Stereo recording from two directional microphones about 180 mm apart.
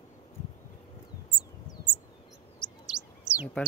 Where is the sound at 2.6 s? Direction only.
25° left (ahead or behind).